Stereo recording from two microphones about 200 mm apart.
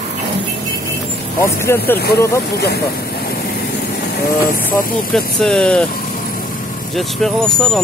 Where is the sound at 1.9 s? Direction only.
50° left (ahead or behind).